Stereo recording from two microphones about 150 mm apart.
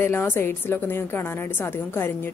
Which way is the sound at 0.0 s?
15° left (ahead or behind).